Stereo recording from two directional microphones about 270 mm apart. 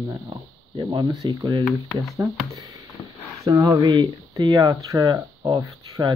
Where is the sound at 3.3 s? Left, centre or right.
Centre.